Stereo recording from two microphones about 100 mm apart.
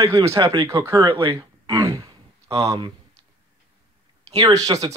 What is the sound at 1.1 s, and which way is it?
Speech, 65° right (ahead or behind).